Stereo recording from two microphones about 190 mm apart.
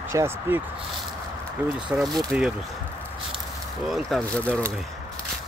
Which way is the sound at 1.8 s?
Centre (ahead or behind).